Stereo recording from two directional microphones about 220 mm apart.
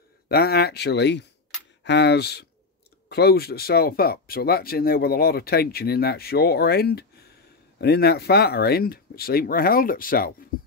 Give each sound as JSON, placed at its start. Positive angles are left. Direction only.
{"t": 0.3, "sound": "speech", "side_deg": 45}